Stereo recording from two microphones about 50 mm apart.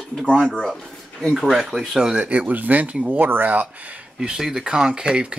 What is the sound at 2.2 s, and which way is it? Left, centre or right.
Speech, right.